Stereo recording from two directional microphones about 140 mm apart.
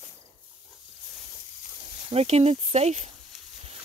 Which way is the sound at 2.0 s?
45° right (ahead or behind).